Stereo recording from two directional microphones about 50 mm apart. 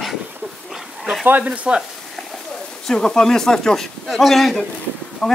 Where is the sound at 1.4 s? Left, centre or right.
Right.